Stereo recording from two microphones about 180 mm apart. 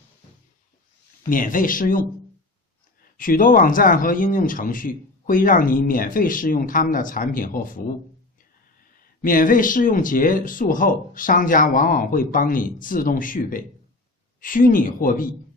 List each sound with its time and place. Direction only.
1.3 s speech: 50° left (ahead or behind)
3.2 s speech: 50° left (ahead or behind)
8.9 s speech: 50° left (ahead or behind)